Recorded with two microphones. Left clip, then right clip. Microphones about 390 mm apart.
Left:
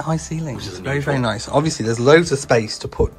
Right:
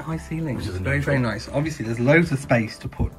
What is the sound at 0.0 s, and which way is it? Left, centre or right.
Speech, centre.